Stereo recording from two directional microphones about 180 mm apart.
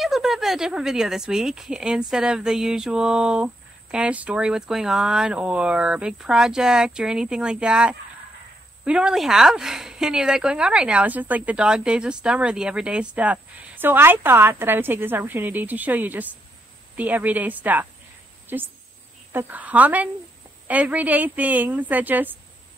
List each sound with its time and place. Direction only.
0.0 s speech: centre (ahead or behind)